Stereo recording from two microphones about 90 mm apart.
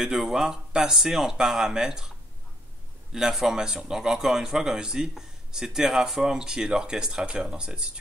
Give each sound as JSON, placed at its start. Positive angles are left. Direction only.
{"t": 0.0, "sound": "a man's voice", "side_deg": -5}